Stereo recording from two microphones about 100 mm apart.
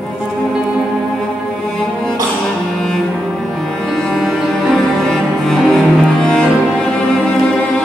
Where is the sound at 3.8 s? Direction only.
5° left (ahead or behind).